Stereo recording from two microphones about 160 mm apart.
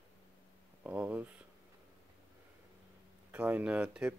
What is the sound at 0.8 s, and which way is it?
Speech, 10° right (ahead or behind).